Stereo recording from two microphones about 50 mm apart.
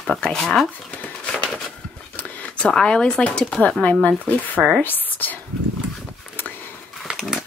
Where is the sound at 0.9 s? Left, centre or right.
Left.